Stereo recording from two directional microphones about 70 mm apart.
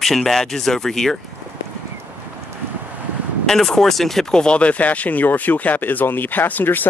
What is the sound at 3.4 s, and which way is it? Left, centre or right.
Speech, centre.